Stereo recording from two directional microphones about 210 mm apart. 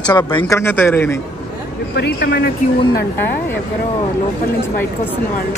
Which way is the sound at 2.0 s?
50° left (ahead or behind).